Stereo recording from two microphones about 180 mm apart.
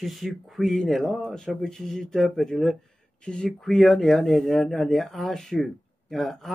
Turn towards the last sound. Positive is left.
turn(degrees=0)  # may be behind; listen again after turning